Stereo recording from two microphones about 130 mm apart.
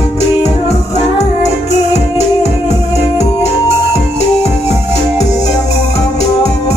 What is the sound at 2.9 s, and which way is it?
Music, 55° left (ahead or behind).